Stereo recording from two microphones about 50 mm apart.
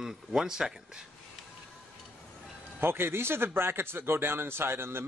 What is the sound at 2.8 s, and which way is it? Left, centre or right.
A man's voice, right.